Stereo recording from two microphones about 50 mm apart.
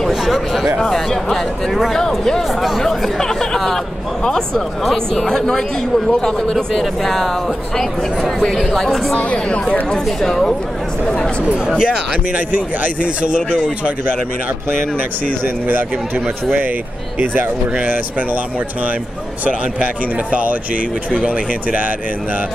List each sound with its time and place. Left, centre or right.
0.1 s speech: centre
9.3 s speech: left
10.0 s speech: centre
11.8 s speech: right
17.2 s speech: right
19.4 s speech: right